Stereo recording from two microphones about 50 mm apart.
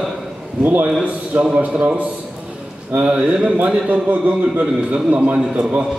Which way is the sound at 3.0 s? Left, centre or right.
Right.